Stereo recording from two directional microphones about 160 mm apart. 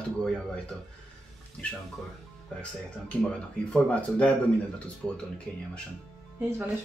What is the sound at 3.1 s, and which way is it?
Speech, 5° left (ahead or behind).